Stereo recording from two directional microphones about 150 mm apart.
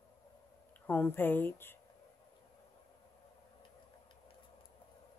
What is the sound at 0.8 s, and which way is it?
Speech, 10° left (ahead or behind).